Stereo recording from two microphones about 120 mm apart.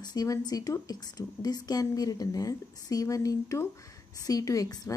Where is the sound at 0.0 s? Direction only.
30° left (ahead or behind).